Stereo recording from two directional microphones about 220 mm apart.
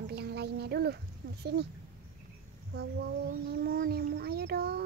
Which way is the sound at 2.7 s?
45° right (ahead or behind).